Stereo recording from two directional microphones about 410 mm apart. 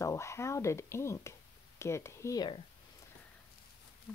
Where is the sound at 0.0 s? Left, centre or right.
Centre.